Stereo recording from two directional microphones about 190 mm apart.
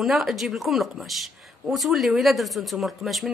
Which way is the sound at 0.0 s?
Centre (ahead or behind).